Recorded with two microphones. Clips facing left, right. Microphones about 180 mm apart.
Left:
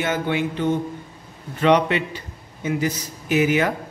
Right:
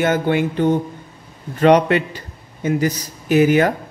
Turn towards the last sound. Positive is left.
turn(degrees=-45)  # may be behind; listen again after turning